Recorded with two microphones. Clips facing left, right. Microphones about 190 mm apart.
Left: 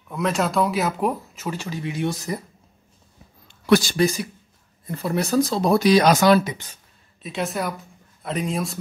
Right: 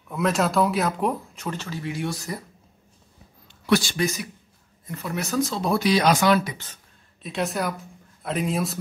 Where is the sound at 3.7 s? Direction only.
40° left (ahead or behind).